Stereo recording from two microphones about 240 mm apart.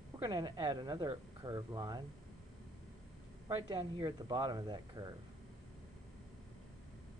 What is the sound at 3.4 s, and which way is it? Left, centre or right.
Speech, centre.